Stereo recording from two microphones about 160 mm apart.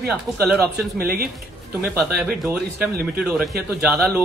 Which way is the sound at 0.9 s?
70° right (ahead or behind).